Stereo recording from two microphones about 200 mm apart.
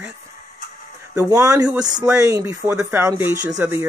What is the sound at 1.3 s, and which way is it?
Speech, 15° right (ahead or behind).